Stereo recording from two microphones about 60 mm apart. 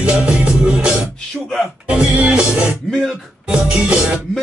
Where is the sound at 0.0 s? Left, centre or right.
Centre.